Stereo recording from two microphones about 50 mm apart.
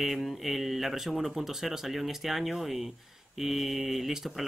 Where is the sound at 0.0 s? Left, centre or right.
Centre.